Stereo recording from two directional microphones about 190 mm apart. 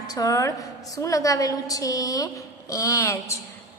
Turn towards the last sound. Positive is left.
turn(degrees=15)  # may be behind; listen again after turning